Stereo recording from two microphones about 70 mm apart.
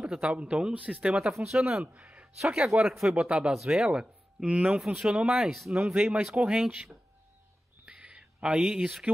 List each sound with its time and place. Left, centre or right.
0.0 s speech: centre
1.3 s speech: centre
7.8 s a sound: centre